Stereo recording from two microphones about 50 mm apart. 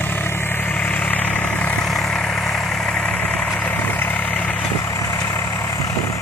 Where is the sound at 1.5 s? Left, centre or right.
Left.